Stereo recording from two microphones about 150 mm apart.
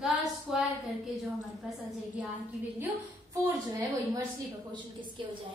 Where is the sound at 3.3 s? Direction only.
20° right (ahead or behind).